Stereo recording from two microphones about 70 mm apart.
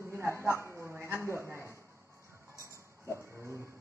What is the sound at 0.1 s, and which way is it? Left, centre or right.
A woman's voice, right.